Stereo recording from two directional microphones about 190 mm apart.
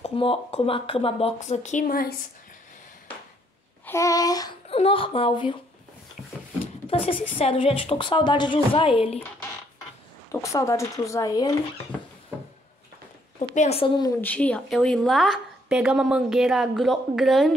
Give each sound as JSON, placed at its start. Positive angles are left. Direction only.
{"t": 0.0, "sound": "speech", "side_deg": 30}
{"t": 3.8, "sound": "a woman's voice", "side_deg": 15}
{"t": 4.6, "sound": "a woman's voice", "side_deg": 30}
{"t": 6.9, "sound": "a woman's voice", "side_deg": 30}
{"t": 10.3, "sound": "speech", "side_deg": 15}
{"t": 13.4, "sound": "a woman's voice", "side_deg": 35}
{"t": 14.2, "sound": "a woman's voice", "side_deg": 5}